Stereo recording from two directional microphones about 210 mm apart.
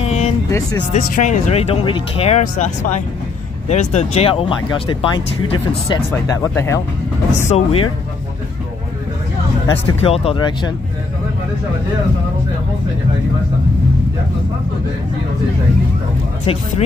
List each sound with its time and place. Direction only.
0.0 s music: 30° left (ahead or behind)
0.5 s music: 15° left (ahead or behind)
0.9 s speech: 35° left (ahead or behind)
3.6 s speech: 35° left (ahead or behind); by 6.8 s 10° left (ahead or behind)
7.4 s speech: 30° left (ahead or behind)
9.7 s speech: 25° left (ahead or behind)
16.5 s speech: 25° left (ahead or behind)